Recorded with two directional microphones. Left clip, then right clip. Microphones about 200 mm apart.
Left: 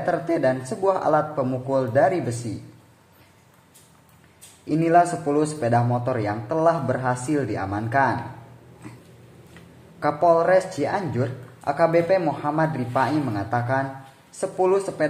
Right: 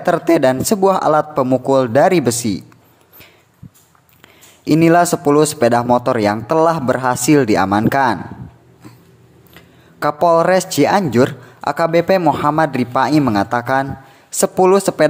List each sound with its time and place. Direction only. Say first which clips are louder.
0.0 s speech: right 9 dB; 40° right (ahead or behind)
4.6 s a man's voice: right 7 dB; 45° right (ahead or behind)
9.5 s a man's voice: right 8 dB; 35° right (ahead or behind)